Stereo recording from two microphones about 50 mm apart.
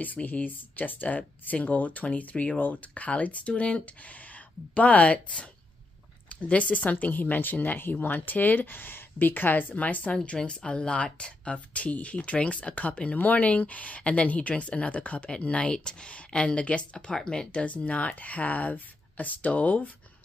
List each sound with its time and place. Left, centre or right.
0.0 s speech: left
6.2 s speech: left
10.1 s speech: left